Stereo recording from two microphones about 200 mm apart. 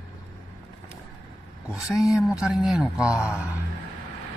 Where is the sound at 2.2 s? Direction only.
Centre (ahead or behind).